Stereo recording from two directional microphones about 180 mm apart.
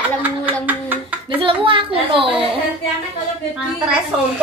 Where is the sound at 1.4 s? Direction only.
30° right (ahead or behind).